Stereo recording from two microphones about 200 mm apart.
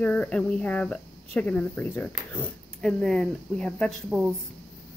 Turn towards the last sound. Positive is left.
turn(degrees=0)  # may be behind; listen again after turning